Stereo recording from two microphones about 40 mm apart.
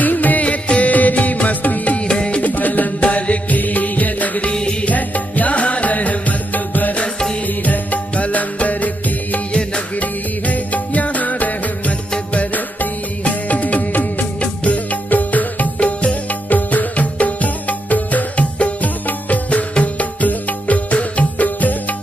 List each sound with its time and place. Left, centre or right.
0.0 s music: left
2.0 s music: left
2.4 s music: left
4.5 s music: left
4.8 s music: left
13.2 s music: left
14.4 s music: left